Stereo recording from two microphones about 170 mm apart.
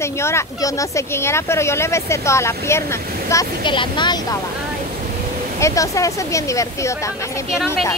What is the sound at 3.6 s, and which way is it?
Speech, 25° left (ahead or behind).